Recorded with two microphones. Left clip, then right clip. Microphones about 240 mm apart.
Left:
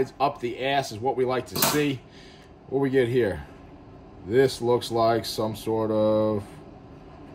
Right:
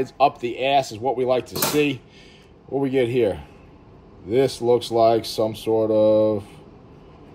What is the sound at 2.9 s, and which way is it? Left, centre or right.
Speech, left.